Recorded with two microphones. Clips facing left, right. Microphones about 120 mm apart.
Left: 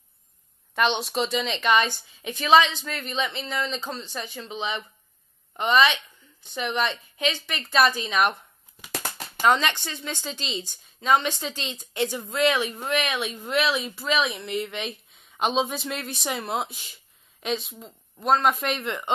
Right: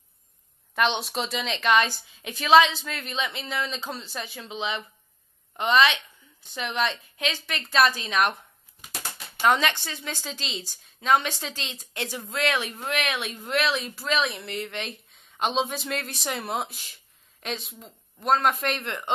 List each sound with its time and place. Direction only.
0.7 s a woman's voice: centre (ahead or behind)
9.4 s a woman's voice: 5° right (ahead or behind)